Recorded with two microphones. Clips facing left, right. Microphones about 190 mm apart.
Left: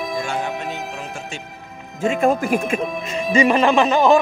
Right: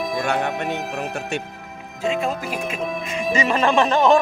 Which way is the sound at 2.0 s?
50° left (ahead or behind).